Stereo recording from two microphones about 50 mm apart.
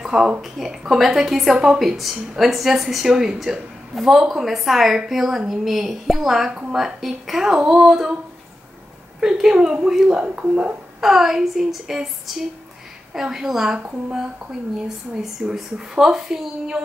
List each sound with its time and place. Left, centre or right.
0.0 s a sound: centre
0.4 s a woman's voice: centre
9.2 s speech: centre
10.0 s a woman's voice: right
11.0 s a woman's voice: centre
13.7 s a woman's voice: right
15.4 s speech: centre